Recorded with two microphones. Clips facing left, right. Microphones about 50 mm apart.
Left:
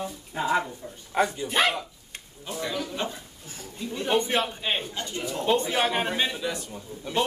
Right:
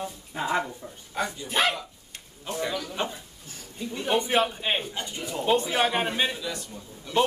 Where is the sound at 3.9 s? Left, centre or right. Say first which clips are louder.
Right 1 dB; centre.